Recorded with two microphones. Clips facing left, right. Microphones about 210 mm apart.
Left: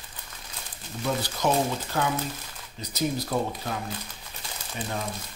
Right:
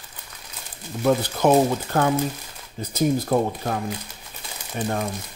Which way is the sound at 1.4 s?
55° right (ahead or behind).